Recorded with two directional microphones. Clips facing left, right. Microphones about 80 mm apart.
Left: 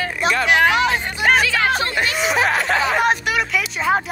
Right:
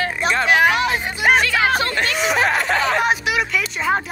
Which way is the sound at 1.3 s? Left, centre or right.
Centre.